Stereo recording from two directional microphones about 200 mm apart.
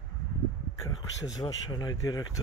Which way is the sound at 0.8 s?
15° left (ahead or behind).